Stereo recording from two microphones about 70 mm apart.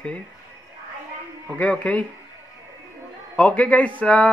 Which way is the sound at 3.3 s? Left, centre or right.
Centre.